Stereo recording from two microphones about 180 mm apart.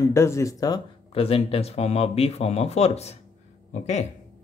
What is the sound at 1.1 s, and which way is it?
Speech, 30° left (ahead or behind).